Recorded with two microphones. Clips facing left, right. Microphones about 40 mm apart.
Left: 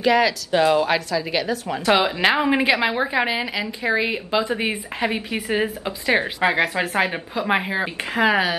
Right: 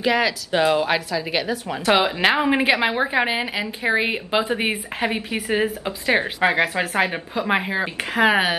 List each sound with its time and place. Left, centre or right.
0.0 s a woman's voice: centre; by 4.7 s right
5.0 s a woman's voice: centre
8.2 s speech: right